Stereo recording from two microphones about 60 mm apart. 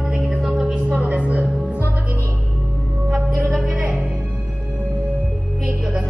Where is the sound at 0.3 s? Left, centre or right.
Centre.